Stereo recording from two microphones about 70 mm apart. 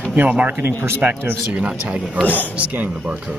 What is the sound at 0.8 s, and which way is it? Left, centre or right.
Speech, right.